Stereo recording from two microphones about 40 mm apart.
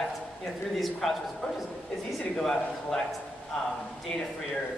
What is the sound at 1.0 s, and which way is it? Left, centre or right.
Speech, centre.